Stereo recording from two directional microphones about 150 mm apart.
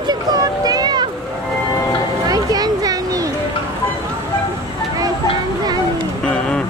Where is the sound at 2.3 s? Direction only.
25° right (ahead or behind).